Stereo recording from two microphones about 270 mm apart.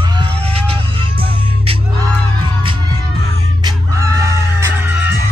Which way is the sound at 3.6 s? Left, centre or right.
Centre.